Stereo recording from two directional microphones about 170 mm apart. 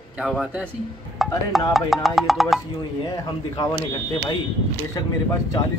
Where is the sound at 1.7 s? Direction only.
Centre (ahead or behind).